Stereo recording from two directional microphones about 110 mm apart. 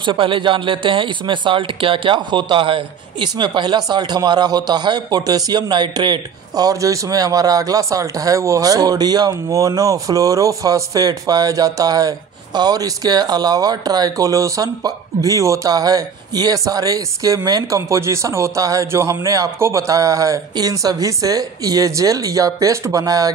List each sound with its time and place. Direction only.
0.0 s speech: 50° right (ahead or behind); by 23.3 s 35° right (ahead or behind)